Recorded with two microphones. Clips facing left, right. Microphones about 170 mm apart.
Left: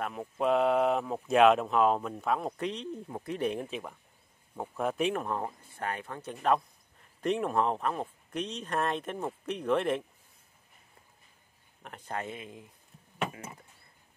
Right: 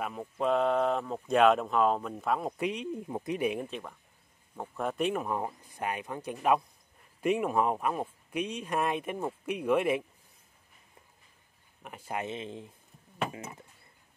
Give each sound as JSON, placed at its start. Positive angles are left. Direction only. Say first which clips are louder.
{"t": 0.0, "sound": "speech", "louder": "left 1 dB", "side_deg": 0}
{"t": 11.8, "sound": "speech", "louder": "right 1 dB", "side_deg": -5}
{"t": 12.2, "sound": "speech", "louder": "right 4 dB", "side_deg": -25}